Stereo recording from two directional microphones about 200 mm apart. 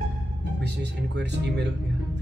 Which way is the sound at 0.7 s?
60° right (ahead or behind).